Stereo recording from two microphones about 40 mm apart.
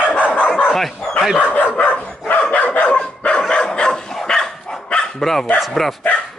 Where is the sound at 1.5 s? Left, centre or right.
Left; by 4.8 s centre.